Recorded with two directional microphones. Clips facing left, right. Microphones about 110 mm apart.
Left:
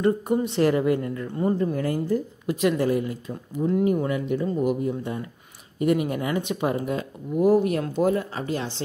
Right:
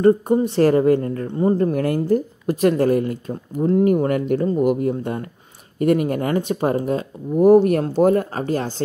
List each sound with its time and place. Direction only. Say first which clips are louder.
0.0 s a woman's voice: right 7 dB; 40° right (ahead or behind)
1.6 s speech: right 5 dB; 70° right (ahead or behind)
2.4 s speech: right 4 dB; 50° right (ahead or behind)
5.8 s speech: right 5 dB; 50° right (ahead or behind)